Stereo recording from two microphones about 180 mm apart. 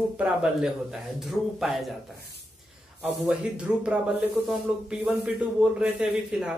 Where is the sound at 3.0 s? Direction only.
5° right (ahead or behind).